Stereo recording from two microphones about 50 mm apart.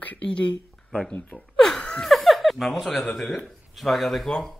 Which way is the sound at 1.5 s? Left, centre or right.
Centre.